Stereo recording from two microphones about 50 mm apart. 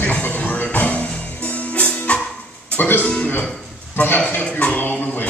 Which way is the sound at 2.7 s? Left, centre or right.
Left.